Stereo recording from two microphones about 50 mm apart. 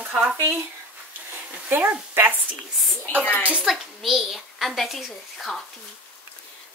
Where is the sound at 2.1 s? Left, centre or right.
Right.